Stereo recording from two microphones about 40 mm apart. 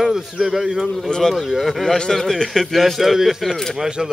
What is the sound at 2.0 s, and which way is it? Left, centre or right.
A man's voice, centre.